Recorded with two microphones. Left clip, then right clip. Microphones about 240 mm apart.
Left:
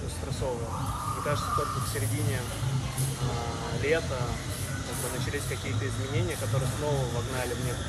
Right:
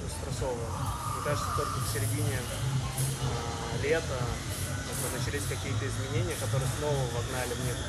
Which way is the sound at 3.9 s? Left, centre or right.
Centre.